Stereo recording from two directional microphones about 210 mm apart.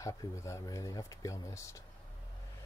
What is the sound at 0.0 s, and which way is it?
Speech, 15° left (ahead or behind).